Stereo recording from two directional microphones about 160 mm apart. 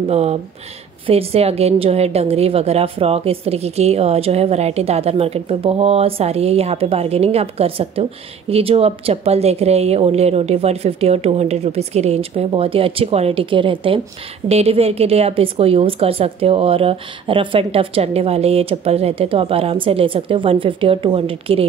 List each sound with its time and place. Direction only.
0.1 s a woman's voice: 40° right (ahead or behind)